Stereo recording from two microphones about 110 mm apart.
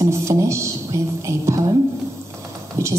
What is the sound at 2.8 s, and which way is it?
Speech, 25° right (ahead or behind).